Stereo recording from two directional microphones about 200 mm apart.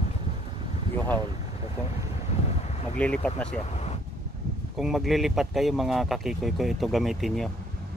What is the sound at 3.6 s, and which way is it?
Speech, 35° left (ahead or behind).